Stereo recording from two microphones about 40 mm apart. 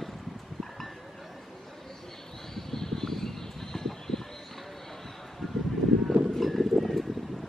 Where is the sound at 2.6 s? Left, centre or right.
Centre.